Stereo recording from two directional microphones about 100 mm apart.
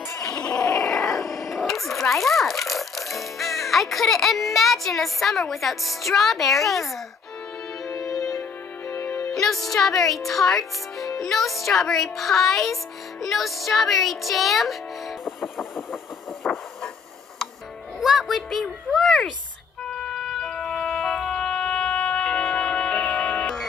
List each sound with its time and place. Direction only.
0.2 s a sound: 5° left (ahead or behind)
1.5 s music: centre (ahead or behind)
7.9 s music: 30° left (ahead or behind)
9.3 s speech: centre (ahead or behind)
16.4 s hiss: 5° left (ahead or behind)
18.0 s a sound: centre (ahead or behind)
20.0 s music: centre (ahead or behind)